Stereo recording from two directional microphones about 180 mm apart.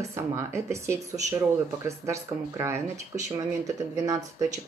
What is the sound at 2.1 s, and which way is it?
Speech, 15° right (ahead or behind).